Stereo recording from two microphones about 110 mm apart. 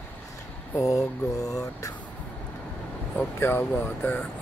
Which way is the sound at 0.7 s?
30° left (ahead or behind).